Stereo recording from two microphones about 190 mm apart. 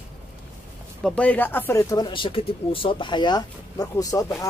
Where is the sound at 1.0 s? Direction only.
5° left (ahead or behind).